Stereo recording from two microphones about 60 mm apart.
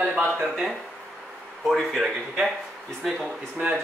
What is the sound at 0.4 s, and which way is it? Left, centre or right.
Speech, centre.